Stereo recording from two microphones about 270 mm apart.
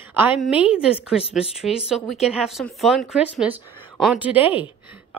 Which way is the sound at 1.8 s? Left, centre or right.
Centre.